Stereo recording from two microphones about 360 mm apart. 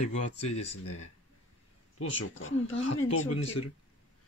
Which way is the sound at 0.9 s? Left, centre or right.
Left.